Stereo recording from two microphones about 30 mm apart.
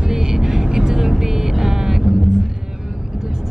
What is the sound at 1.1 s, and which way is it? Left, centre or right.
Music, centre.